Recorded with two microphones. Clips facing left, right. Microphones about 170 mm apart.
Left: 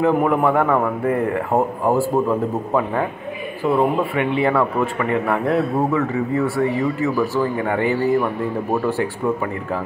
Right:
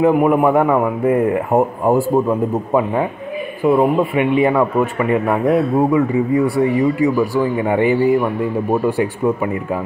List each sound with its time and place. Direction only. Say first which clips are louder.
0.0 s a man's voice: right 4 dB; 15° right (ahead or behind)